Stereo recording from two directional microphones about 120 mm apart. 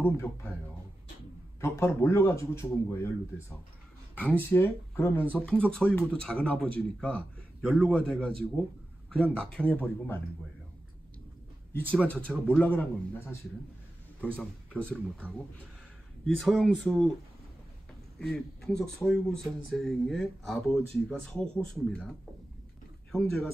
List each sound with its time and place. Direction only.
0.0 s speech: 20° left (ahead or behind)
1.6 s speech: 20° left (ahead or behind)
11.7 s speech: 15° left (ahead or behind)
14.4 s speech: 10° left (ahead or behind)
16.3 s speech: centre (ahead or behind)
18.2 s speech: 5° left (ahead or behind)
23.1 s speech: 5° left (ahead or behind)